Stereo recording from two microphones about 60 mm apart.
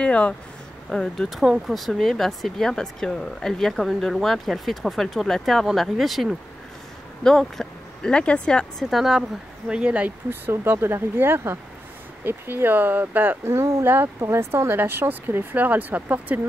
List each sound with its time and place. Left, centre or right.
0.0 s speech: centre
7.2 s speech: centre
8.9 s speech: centre
9.7 s speech: centre
10.4 s speech: right
13.5 s speech: right